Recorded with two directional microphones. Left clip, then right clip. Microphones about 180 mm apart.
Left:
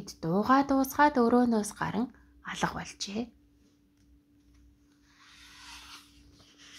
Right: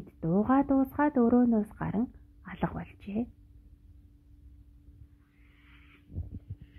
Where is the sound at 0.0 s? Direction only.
10° right (ahead or behind).